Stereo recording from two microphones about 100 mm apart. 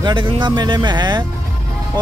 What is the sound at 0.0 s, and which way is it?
Speech, 55° right (ahead or behind).